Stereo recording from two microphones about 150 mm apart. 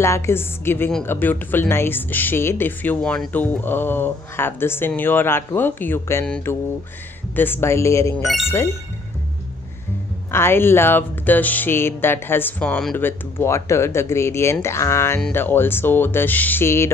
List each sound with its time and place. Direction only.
0.0 s speech: 20° left (ahead or behind)
10.3 s speech: 15° left (ahead or behind)